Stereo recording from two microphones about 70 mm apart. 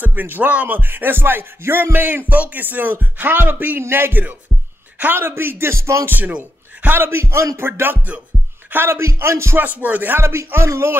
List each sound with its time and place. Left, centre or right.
0.0 s music: right
4.9 s speech: right
6.0 s music: right
7.5 s speech: right
9.8 s music: right
10.2 s speech: right